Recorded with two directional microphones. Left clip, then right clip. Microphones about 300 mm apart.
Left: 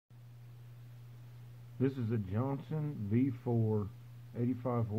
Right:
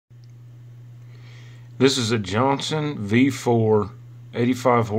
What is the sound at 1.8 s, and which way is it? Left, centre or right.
Speech, centre.